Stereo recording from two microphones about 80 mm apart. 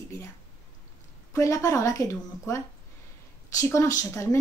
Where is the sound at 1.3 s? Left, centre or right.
Left.